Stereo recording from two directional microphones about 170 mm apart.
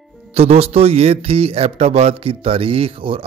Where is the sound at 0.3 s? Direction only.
35° right (ahead or behind).